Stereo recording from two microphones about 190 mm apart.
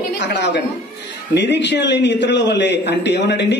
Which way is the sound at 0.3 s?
65° left (ahead or behind).